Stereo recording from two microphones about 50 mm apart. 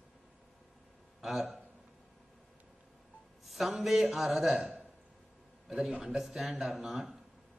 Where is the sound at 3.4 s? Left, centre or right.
Centre.